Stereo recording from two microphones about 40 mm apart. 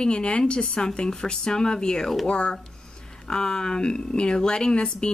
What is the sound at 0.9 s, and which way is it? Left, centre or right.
Speech, centre.